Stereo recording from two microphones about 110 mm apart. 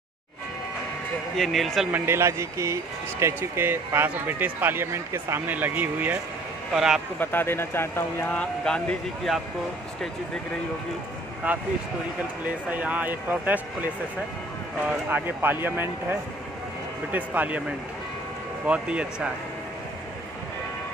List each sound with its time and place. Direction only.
1.3 s speech: centre (ahead or behind)
1.9 s speech: 20° right (ahead or behind)
6.7 s speech: 5° right (ahead or behind)
7.2 s speech: 20° left (ahead or behind)
11.5 s speech: 15° right (ahead or behind)
12.6 s speech: 15° right (ahead or behind)
15.0 s speech: 20° right (ahead or behind)
18.7 s speech: 10° right (ahead or behind)